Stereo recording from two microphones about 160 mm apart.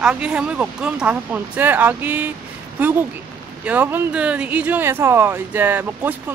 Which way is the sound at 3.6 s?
10° right (ahead or behind).